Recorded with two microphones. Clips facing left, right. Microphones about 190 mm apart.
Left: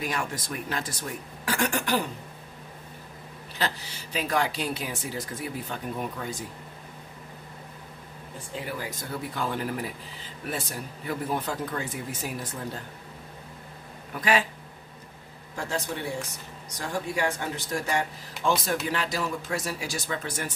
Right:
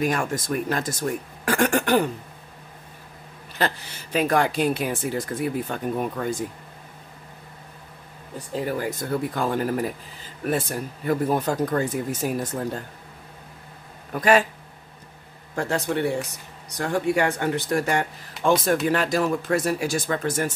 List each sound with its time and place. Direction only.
0.0 s speech: 50° right (ahead or behind)
3.5 s speech: 55° right (ahead or behind)
8.4 s speech: 45° right (ahead or behind)
14.1 s speech: 50° right (ahead or behind)
15.5 s speech: 65° right (ahead or behind); by 20.5 s 45° right (ahead or behind)